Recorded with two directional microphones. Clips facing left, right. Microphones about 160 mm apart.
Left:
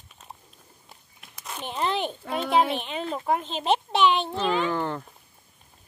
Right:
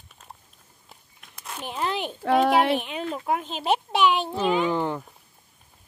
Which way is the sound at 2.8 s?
5° right (ahead or behind).